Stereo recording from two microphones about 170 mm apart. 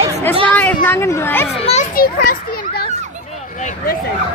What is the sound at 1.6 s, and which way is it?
Speech, 40° left (ahead or behind).